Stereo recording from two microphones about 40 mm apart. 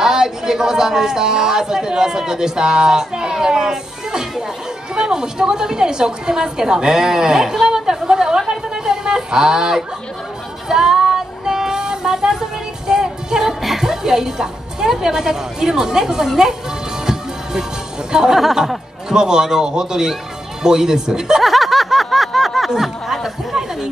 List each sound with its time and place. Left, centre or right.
0.0 s a woman's voice: centre
7.6 s a sound: centre
10.7 s child singing: centre
17.0 s music: centre
18.1 s a woman's voice: centre
21.4 s a sound: centre
22.8 s chatter: centre